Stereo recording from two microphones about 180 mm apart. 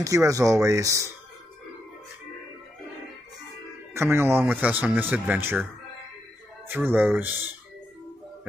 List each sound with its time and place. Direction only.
0.0 s speech: 15° right (ahead or behind)
3.9 s speech: 15° right (ahead or behind)
6.7 s speech: 10° right (ahead or behind)